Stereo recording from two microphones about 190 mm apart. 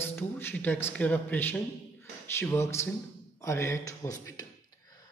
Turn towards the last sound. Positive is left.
turn(degrees=15)  # may be behind; listen again after turning